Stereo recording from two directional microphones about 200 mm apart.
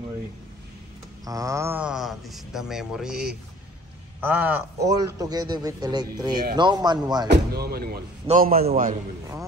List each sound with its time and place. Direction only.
1.2 s speech: 15° right (ahead or behind)
7.2 s speech: 50° right (ahead or behind)